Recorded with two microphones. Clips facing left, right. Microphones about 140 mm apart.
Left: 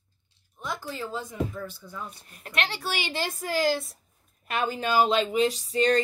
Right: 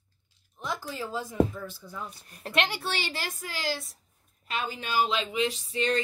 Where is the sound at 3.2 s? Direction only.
40° left (ahead or behind).